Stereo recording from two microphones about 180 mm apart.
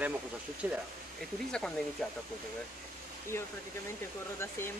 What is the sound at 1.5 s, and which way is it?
Speech, 5° left (ahead or behind).